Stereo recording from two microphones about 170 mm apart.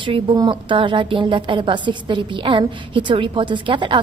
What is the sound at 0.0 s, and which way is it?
A woman's voice, 30° right (ahead or behind).